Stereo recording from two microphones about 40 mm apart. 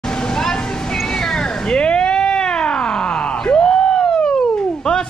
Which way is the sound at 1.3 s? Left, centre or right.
Left.